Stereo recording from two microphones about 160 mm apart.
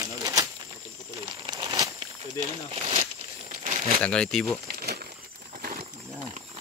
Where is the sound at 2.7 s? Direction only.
35° right (ahead or behind).